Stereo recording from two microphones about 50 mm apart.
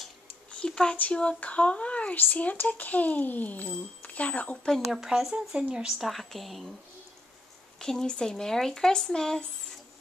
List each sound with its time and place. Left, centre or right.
0.5 s speech: centre
0.9 s a child's voice: left
4.9 s a woman's voice: centre
5.3 s speech: centre
5.9 s a woman's voice: centre
7.8 s speech: centre